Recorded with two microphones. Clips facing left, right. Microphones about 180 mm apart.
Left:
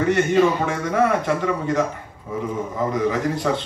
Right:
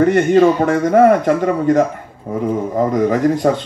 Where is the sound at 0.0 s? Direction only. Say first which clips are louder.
Right 6 dB; 50° right (ahead or behind).